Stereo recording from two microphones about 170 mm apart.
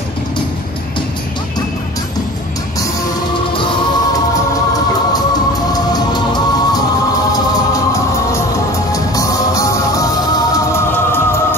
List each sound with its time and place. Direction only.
5.7 s music: 25° left (ahead or behind)
8.9 s music: 20° left (ahead or behind)